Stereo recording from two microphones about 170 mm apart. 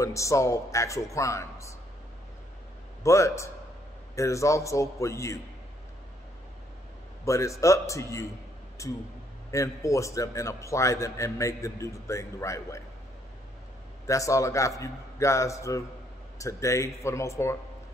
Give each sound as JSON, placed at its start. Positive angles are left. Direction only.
{"t": 0.0, "sound": "a man's voice", "side_deg": 20}
{"t": 3.0, "sound": "a man's voice", "side_deg": 15}
{"t": 7.2, "sound": "a man's voice", "side_deg": 20}
{"t": 14.0, "sound": "a man's voice", "side_deg": 20}